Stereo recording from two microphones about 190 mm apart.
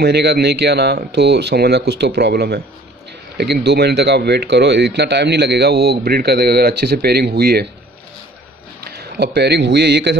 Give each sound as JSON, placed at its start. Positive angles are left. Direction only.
{"t": 0.0, "sound": "speech", "side_deg": -60}
{"t": 8.8, "sound": "a man's voice", "side_deg": -60}